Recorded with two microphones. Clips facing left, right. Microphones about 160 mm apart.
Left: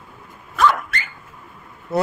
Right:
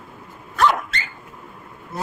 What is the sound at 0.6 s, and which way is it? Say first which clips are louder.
Dog: left 1 dB; 25° right (ahead or behind).